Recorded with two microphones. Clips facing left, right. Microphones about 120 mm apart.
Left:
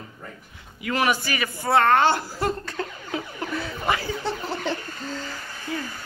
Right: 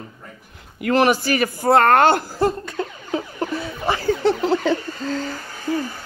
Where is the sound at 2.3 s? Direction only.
20° right (ahead or behind).